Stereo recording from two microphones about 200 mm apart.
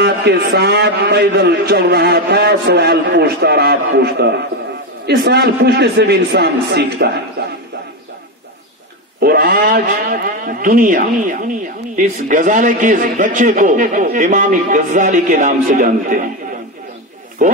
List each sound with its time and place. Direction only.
0.0 s a man's voice: 55° right (ahead or behind)
9.2 s a man's voice: 50° right (ahead or behind)
17.4 s a man's voice: 40° right (ahead or behind)